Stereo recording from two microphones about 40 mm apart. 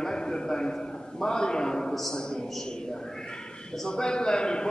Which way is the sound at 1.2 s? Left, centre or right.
Centre.